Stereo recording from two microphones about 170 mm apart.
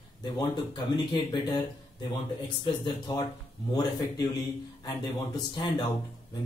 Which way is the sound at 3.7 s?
20° left (ahead or behind).